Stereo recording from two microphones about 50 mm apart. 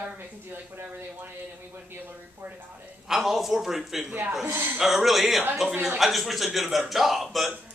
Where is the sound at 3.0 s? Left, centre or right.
Centre.